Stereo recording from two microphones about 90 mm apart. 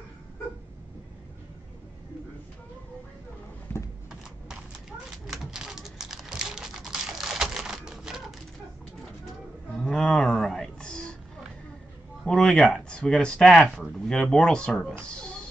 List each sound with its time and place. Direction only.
3.7 s a sound: 25° left (ahead or behind)
5.2 s typing: 5° right (ahead or behind)
9.8 s a sound: 5° left (ahead or behind)
12.3 s speech: 10° left (ahead or behind)
13.5 s speech: 5° right (ahead or behind)
13.9 s speech: 5° left (ahead or behind)